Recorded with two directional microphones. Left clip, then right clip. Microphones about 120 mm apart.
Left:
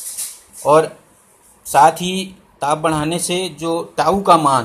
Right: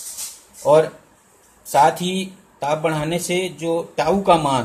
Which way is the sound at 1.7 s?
15° left (ahead or behind).